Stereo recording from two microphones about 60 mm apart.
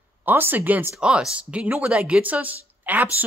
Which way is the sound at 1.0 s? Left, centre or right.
Centre.